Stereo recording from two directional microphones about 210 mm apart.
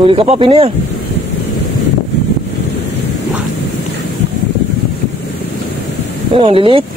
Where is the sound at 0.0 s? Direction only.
25° right (ahead or behind).